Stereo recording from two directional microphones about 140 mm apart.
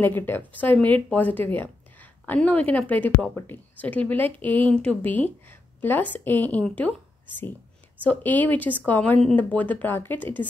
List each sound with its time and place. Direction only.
0.0 s speech: 15° left (ahead or behind)